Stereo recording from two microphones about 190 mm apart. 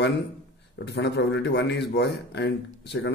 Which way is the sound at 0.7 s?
65° left (ahead or behind).